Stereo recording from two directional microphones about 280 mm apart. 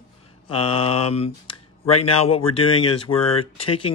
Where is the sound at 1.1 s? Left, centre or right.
Left.